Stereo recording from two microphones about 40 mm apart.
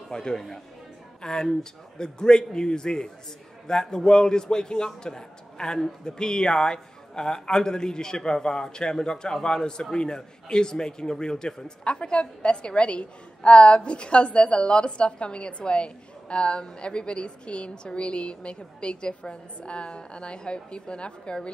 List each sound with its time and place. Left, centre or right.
0.1 s a man's voice: centre